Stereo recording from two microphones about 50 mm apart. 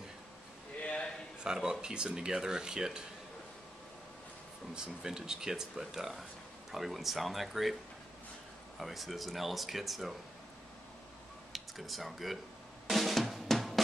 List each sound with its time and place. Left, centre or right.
0.7 s a sound: left
1.4 s speech: centre
4.7 s speech: centre
8.7 s speech: centre
11.5 s speech: centre
12.8 s drum: centre